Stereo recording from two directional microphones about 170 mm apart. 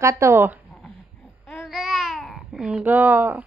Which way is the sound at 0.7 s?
10° left (ahead or behind).